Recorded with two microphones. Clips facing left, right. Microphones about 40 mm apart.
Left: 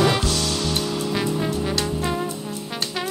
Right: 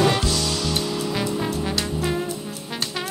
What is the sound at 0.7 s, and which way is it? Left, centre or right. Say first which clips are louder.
Music: left 1 dB; centre.